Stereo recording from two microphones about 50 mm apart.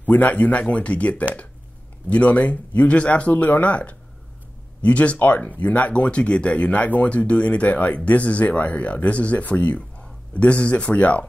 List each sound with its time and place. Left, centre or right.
0.0 s speech: left